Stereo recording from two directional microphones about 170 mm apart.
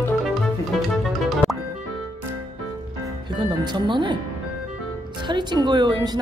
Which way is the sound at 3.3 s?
25° right (ahead or behind).